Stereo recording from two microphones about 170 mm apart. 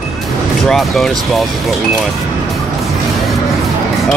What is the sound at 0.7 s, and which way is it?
Speech, centre (ahead or behind).